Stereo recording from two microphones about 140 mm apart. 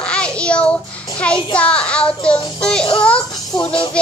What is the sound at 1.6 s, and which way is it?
Music, 10° left (ahead or behind).